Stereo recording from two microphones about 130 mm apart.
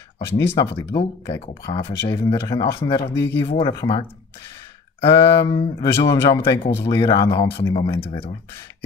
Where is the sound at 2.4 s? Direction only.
25° left (ahead or behind).